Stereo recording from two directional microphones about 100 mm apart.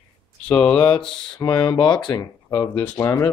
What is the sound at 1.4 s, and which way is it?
Speech, 40° left (ahead or behind).